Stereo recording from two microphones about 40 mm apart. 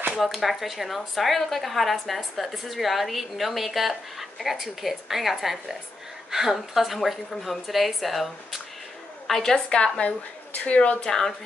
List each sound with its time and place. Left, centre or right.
0.1 s speech: centre
9.3 s a woman's voice: centre
9.9 s speech: left
11.1 s a woman's voice: centre